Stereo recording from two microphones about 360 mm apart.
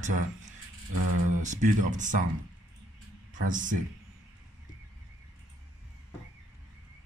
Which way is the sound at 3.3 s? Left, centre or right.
Right.